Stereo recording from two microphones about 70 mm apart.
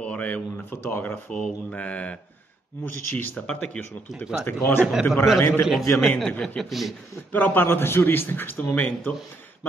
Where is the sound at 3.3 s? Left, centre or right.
Centre.